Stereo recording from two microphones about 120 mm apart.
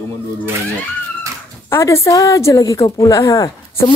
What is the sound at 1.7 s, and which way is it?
A woman's voice, 25° left (ahead or behind).